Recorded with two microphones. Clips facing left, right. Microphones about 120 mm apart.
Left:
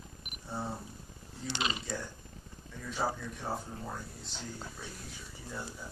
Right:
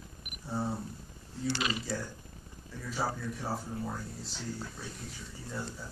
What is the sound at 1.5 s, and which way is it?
Speech, 25° left (ahead or behind).